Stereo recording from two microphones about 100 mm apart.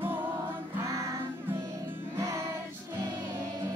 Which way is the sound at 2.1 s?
30° right (ahead or behind).